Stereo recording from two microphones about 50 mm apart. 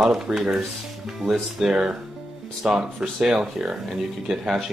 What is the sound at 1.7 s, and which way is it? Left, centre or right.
Speech, right.